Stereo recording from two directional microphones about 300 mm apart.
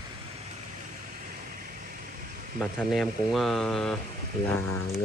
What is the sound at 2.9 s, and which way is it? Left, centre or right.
Speech, centre.